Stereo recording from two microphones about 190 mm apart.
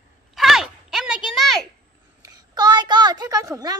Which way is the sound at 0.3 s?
Centre (ahead or behind).